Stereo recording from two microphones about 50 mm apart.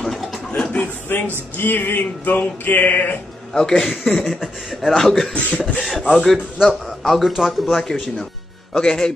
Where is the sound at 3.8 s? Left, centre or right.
Centre.